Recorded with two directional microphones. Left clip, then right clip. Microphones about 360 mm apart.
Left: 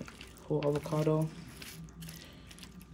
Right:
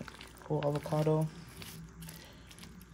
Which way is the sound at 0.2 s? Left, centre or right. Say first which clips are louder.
Left 1 dB; centre.